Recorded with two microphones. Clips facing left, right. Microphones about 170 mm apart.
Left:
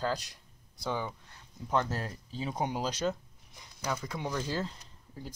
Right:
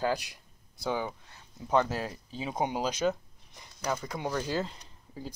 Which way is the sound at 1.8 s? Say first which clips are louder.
Right 3 dB; 10° right (ahead or behind).